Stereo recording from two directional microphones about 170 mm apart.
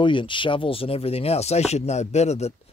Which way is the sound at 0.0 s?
30° left (ahead or behind).